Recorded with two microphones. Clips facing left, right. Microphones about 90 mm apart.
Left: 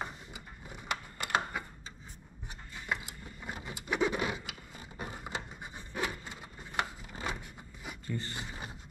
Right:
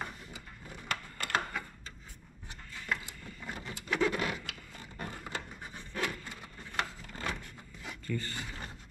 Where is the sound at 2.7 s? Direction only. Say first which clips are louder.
Even; 15° left (ahead or behind).